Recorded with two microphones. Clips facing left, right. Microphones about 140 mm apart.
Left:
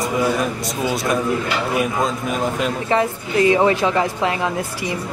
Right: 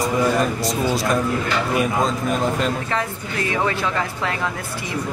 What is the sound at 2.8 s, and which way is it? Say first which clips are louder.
Speech: left 6 dB; 20° left (ahead or behind).